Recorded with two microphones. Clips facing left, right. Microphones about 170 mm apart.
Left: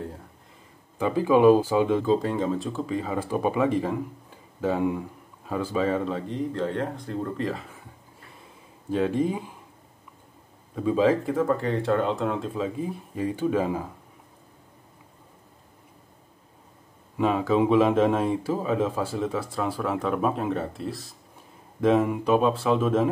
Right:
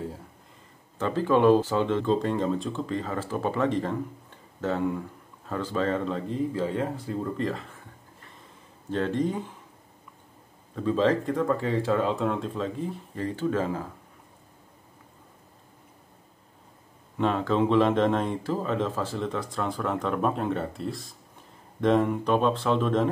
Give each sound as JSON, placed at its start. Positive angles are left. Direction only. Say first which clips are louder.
{"t": 0.9, "sound": "speech", "louder": "left 3 dB", "side_deg": 10}
{"t": 8.9, "sound": "speech", "louder": "left 2 dB", "side_deg": 10}
{"t": 10.7, "sound": "speech", "louder": "left 2 dB", "side_deg": 10}
{"t": 17.2, "sound": "speech", "louder": "left 2 dB", "side_deg": 5}